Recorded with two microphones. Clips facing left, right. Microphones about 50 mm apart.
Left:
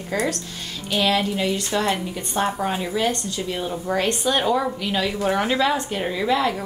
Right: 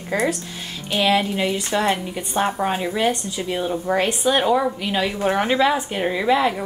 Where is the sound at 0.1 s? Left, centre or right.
Centre.